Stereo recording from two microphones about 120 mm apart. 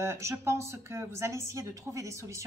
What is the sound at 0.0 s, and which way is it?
A woman's voice, 25° right (ahead or behind).